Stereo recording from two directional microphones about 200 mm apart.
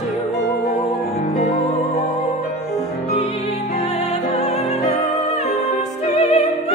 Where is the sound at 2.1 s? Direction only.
30° left (ahead or behind).